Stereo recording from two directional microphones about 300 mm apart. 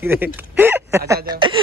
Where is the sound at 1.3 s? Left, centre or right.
Centre.